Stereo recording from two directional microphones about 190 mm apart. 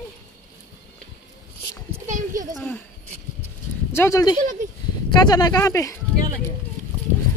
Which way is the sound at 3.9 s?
15° left (ahead or behind).